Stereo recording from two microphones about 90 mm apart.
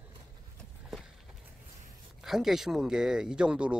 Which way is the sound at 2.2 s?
5° right (ahead or behind).